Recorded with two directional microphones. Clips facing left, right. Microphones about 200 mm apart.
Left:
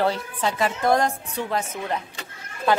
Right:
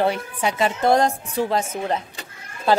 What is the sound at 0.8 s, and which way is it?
A woman's voice, 30° right (ahead or behind).